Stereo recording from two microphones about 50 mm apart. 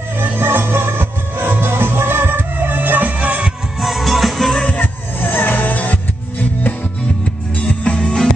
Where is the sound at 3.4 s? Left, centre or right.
Centre.